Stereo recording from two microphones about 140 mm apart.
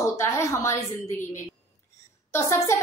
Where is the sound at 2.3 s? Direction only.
20° left (ahead or behind).